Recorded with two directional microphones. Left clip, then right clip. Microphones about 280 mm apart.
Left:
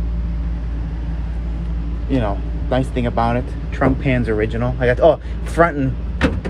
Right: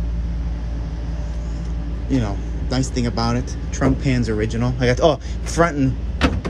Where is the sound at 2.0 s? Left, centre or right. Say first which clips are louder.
Left 3 dB; centre.